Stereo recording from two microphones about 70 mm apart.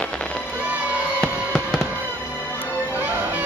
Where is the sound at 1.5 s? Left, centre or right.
Centre.